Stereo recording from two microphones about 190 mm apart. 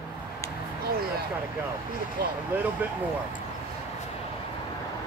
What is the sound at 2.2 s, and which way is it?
Speech, 55° right (ahead or behind).